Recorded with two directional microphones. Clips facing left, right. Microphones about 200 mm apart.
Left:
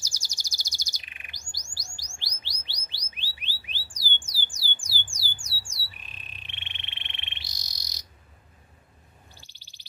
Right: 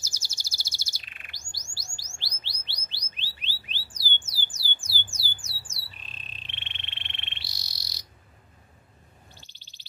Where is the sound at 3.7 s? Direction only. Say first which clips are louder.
Even; 15° left (ahead or behind).